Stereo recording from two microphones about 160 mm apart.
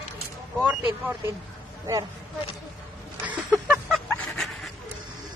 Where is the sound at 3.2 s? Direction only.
10° right (ahead or behind).